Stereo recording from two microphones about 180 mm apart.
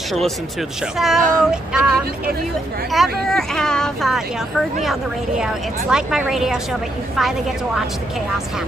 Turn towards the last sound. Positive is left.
turn(degrees=0)  # may be behind; listen again after turning